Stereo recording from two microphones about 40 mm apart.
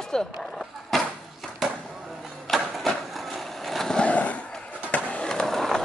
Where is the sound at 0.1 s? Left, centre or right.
Centre.